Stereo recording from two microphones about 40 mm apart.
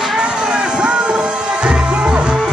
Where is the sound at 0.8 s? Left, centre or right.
Right.